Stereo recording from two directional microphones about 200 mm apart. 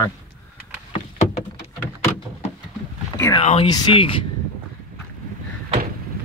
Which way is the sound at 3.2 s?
20° left (ahead or behind).